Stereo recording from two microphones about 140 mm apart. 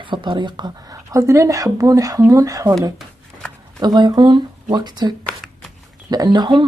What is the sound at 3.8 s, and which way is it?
Speech, 30° right (ahead or behind).